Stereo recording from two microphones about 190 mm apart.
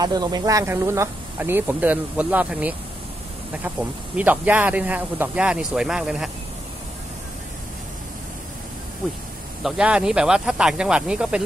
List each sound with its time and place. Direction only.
0.0 s speech: 20° right (ahead or behind)
4.2 s speech: 10° right (ahead or behind)
9.6 s speech: 5° right (ahead or behind)